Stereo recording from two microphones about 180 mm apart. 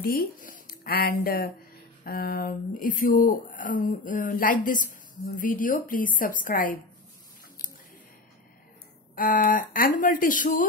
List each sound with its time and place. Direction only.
0.0 s speech: 55° left (ahead or behind)
9.1 s speech: 50° left (ahead or behind)